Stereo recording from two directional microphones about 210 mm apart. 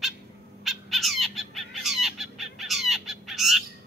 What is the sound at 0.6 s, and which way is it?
Bird, centre (ahead or behind).